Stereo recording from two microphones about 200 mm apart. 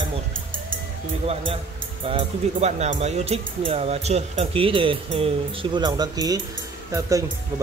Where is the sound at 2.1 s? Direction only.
30° right (ahead or behind).